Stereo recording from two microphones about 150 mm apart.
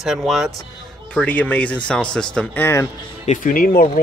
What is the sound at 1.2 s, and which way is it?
Speech, 10° left (ahead or behind).